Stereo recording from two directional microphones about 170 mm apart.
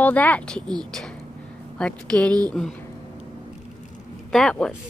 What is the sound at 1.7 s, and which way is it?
A woman's voice, 5° left (ahead or behind).